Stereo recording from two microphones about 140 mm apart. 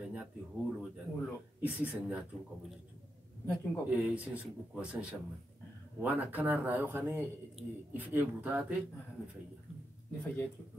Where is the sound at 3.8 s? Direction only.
10° right (ahead or behind).